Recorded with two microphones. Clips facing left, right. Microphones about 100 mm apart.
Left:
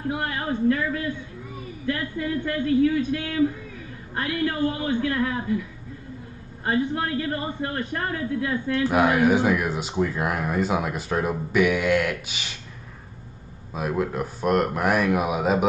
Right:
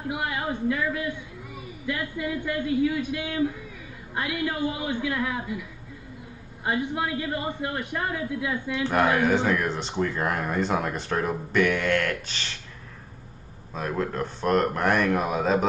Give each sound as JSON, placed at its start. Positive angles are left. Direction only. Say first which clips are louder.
{"t": 0.1, "sound": "a man's voice", "louder": "even", "side_deg": -15}
{"t": 6.6, "sound": "a man's voice", "louder": "left 3 dB", "side_deg": -15}
{"t": 8.8, "sound": "speech", "louder": "left 2 dB", "side_deg": 5}
{"t": 13.7, "sound": "speech", "louder": "left 2 dB", "side_deg": 10}